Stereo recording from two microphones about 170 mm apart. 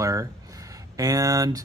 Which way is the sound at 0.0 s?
20° right (ahead or behind).